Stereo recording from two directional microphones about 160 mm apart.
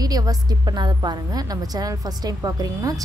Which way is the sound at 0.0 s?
25° right (ahead or behind).